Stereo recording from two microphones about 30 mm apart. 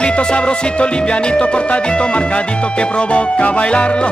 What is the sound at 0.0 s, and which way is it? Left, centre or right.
Music, left.